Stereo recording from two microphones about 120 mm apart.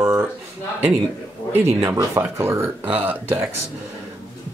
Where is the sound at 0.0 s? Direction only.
25° right (ahead or behind).